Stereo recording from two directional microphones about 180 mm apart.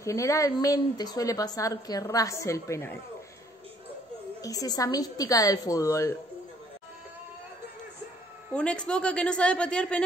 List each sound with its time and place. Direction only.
0.0 s a woman's voice: 15° left (ahead or behind)
4.4 s a woman's voice: 20° left (ahead or behind)
8.5 s a woman's voice: 5° left (ahead or behind)